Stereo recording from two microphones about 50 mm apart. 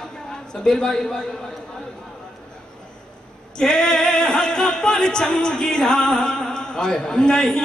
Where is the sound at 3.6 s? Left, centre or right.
Centre.